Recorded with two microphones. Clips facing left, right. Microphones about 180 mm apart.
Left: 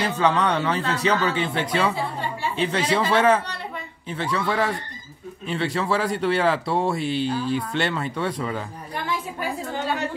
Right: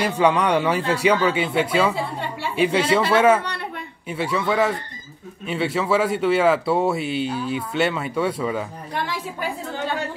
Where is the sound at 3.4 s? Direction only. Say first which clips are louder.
Right 3 dB; 60° right (ahead or behind).